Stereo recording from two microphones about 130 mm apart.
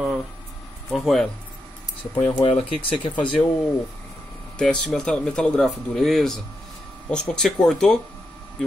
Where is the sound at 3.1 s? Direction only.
10° left (ahead or behind).